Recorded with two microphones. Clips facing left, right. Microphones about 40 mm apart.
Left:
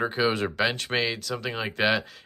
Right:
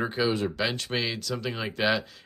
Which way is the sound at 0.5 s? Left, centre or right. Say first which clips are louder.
Left 3 dB; left.